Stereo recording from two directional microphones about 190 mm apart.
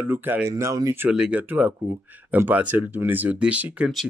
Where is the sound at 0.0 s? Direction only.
10° right (ahead or behind).